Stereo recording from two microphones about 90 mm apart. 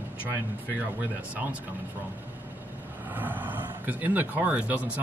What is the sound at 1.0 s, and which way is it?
Speech, 20° right (ahead or behind).